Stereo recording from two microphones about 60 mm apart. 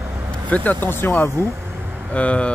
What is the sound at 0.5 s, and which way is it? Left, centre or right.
Speech, left.